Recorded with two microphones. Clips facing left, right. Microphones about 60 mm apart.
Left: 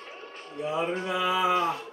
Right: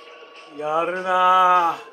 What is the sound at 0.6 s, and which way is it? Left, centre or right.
Speech, right.